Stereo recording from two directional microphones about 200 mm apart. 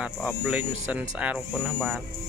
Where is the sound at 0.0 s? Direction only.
5° right (ahead or behind).